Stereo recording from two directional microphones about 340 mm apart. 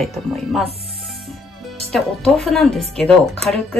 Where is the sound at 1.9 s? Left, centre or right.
Centre.